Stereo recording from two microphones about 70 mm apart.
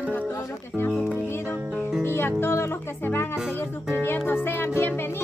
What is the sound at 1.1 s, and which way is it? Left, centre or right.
Speech, left.